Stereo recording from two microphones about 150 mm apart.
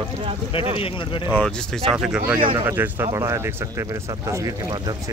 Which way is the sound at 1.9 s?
5° right (ahead or behind).